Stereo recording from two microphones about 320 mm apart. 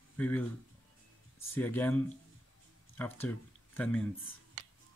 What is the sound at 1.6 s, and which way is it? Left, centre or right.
Speech, centre.